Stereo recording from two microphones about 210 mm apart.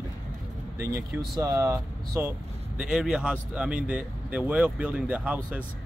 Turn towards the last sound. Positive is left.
turn(degrees=-5)  # may be behind; listen again after turning